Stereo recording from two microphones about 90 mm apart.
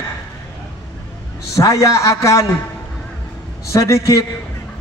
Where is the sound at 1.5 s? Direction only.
40° left (ahead or behind).